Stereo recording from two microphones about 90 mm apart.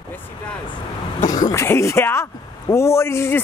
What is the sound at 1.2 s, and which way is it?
Speech, 40° left (ahead or behind).